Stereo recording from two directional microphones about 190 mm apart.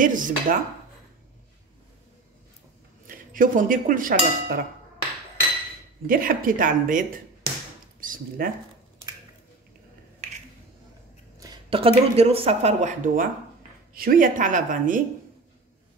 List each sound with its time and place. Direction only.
0.0 s a woman's voice: 45° right (ahead or behind)
3.1 s dishes: 45° right (ahead or behind)
6.0 s a woman's voice: 50° right (ahead or behind)
11.3 s a woman's voice: 20° right (ahead or behind); by 15.0 s 45° right (ahead or behind)